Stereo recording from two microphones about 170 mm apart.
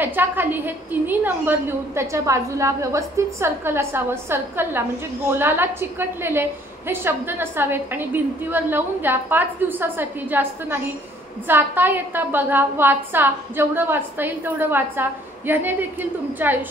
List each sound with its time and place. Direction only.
0.0 s a woman's voice: 10° right (ahead or behind)